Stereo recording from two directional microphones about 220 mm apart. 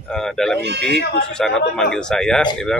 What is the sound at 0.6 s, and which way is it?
Speech, 50° right (ahead or behind).